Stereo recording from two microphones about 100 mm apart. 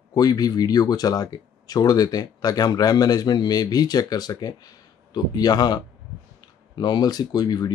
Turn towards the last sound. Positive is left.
turn(degrees=40)  # may be behind; listen again after turning